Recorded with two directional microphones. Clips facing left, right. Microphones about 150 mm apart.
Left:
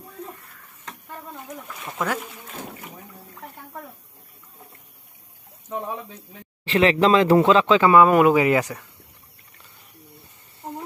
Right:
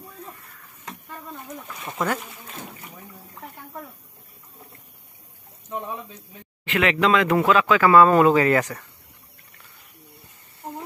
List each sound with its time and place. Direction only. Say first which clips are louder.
1.8 s speech: right 1 dB; centre (ahead or behind)
6.6 s speech: left 3 dB; 30° left (ahead or behind); by 8.8 s 15° left (ahead or behind)